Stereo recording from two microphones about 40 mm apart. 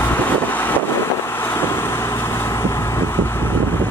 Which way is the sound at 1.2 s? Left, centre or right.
Left.